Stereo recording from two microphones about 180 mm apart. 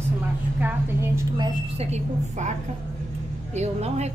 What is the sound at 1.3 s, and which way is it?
Speech, 30° right (ahead or behind).